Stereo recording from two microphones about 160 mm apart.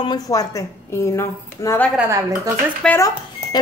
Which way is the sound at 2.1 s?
20° right (ahead or behind).